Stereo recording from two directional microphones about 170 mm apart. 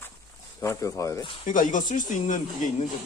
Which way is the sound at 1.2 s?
35° left (ahead or behind).